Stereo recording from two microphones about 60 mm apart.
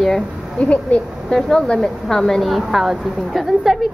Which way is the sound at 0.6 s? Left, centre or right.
Left.